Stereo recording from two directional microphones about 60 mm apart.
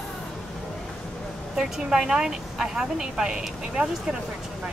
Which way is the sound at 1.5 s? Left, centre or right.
Centre.